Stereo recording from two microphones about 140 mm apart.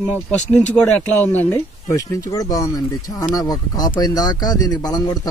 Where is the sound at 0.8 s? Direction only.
10° left (ahead or behind).